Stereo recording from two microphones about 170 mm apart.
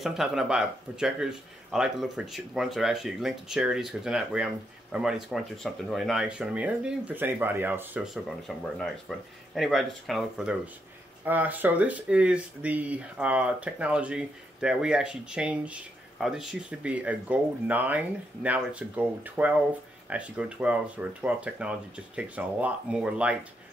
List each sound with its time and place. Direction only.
0.0 s speech: centre (ahead or behind)